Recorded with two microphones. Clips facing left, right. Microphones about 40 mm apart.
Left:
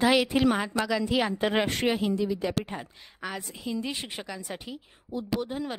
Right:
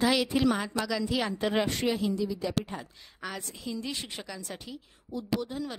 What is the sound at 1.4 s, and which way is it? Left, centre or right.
Speech, left.